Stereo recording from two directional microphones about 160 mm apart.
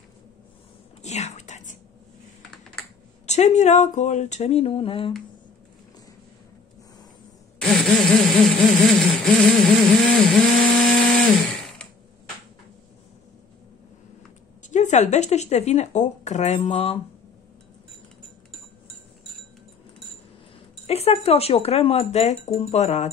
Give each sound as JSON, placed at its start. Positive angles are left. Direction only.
{"t": 1.0, "sound": "whispering", "side_deg": 45}
{"t": 3.3, "sound": "speech", "side_deg": 45}
{"t": 7.6, "sound": "a sound", "side_deg": 5}
{"t": 9.9, "sound": "chainsaw", "side_deg": 0}
{"t": 14.7, "sound": "speech", "side_deg": 50}
{"t": 20.8, "sound": "speech", "side_deg": 40}